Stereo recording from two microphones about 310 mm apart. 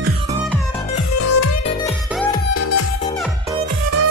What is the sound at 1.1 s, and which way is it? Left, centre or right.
Music, left.